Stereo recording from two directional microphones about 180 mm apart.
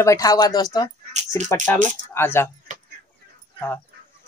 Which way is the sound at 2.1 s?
15° left (ahead or behind).